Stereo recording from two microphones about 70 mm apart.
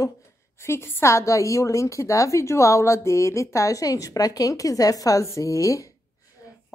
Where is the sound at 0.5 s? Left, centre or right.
Left.